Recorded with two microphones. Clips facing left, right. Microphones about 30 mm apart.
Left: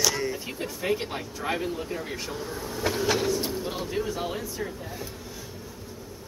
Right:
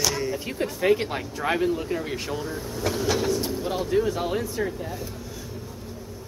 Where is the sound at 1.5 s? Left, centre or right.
Centre.